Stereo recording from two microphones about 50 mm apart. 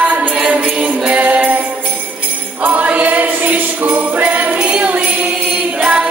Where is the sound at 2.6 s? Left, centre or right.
Right.